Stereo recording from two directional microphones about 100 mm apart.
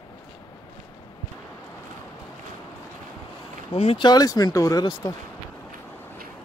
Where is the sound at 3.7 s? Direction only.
80° left.